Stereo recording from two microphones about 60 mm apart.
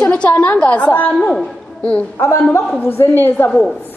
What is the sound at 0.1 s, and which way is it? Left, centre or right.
A woman's voice, left.